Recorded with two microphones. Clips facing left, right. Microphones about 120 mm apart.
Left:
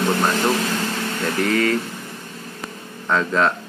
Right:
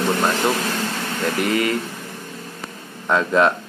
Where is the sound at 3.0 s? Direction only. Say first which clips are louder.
Right 2 dB; 15° right (ahead or behind).